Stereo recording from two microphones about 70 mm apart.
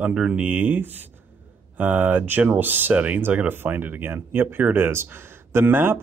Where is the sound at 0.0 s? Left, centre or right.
Centre.